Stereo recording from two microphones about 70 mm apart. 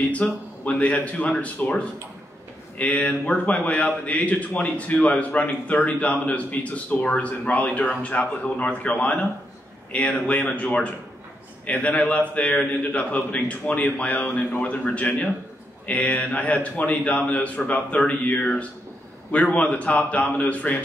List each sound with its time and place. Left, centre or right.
0.2 s a man's voice: centre
2.8 s a man's voice: centre